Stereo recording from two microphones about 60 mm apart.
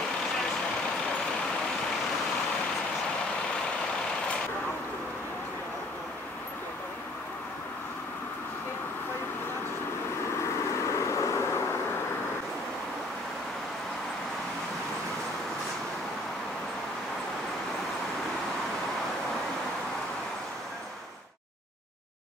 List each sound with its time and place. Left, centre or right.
10.4 s vehicle: left